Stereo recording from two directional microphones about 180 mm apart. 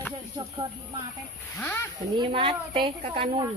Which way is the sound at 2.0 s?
25° right (ahead or behind).